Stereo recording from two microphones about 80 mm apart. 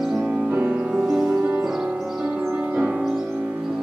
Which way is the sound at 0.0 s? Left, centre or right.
Centre.